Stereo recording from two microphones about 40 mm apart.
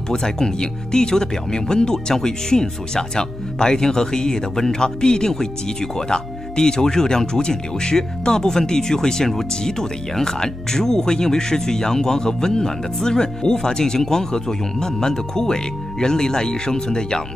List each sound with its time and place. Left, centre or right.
0.1 s speech: centre